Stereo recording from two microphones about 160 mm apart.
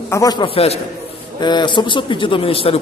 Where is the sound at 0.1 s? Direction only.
25° left (ahead or behind).